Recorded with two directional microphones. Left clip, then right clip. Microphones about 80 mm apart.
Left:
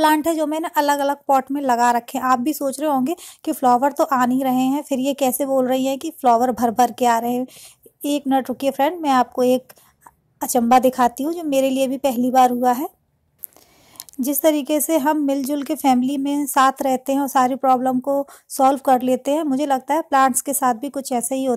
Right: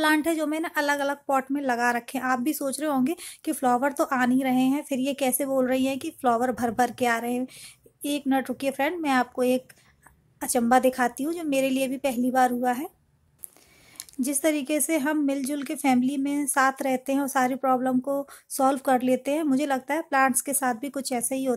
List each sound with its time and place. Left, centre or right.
0.0 s a woman's voice: left
1.5 s a woman's voice: left
2.4 s a woman's voice: left
10.7 s a woman's voice: left
13.9 s a woman's voice: left